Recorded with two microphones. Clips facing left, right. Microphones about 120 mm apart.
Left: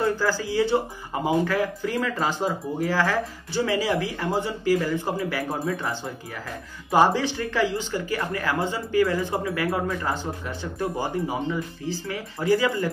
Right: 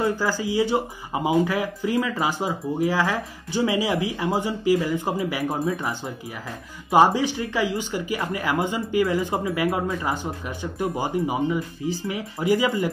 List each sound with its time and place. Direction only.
0.0 s speech: 15° right (ahead or behind)
6.9 s speech: 15° right (ahead or behind)